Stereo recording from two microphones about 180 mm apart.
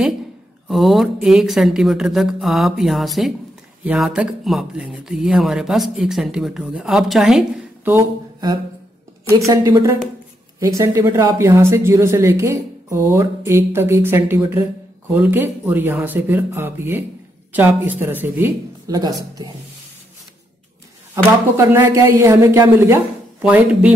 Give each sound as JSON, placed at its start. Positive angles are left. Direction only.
{"t": 0.7, "sound": "speech", "side_deg": 0}
{"t": 7.9, "sound": "speech", "side_deg": -20}
{"t": 21.5, "sound": "speech", "side_deg": -15}